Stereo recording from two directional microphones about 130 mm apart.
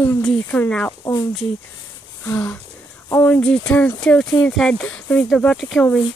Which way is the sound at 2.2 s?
10° left (ahead or behind).